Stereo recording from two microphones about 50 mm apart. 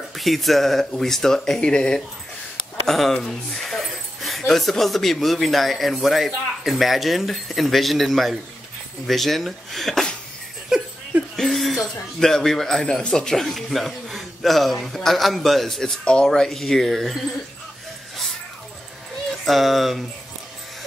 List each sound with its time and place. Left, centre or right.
0.1 s speech: centre
2.9 s speech: centre
10.7 s a sound: centre
11.3 s speech: centre
16.0 s speech: centre
19.4 s speech: centre